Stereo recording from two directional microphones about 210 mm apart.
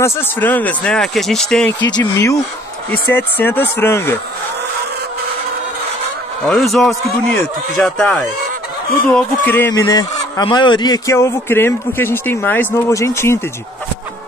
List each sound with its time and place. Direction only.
0.0 s a man's voice: 10° left (ahead or behind)
1.9 s speech: 15° left (ahead or behind)
6.4 s a man's voice: centre (ahead or behind)